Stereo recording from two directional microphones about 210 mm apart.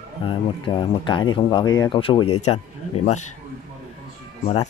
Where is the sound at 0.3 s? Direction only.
20° left (ahead or behind).